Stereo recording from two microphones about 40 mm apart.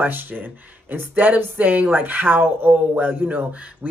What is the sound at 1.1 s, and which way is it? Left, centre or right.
Speech, right.